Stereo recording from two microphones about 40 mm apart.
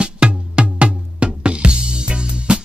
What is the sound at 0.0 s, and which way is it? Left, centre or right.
Music, right.